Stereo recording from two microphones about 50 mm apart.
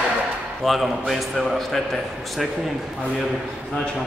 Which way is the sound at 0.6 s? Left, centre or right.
Centre.